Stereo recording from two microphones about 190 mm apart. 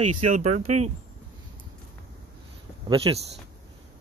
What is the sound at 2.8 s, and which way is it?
Speech, 30° right (ahead or behind).